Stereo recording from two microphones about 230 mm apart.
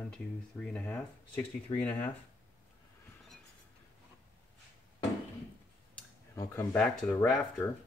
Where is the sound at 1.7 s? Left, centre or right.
Left.